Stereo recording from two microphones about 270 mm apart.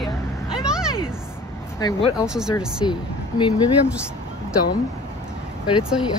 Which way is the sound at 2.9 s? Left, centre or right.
Centre.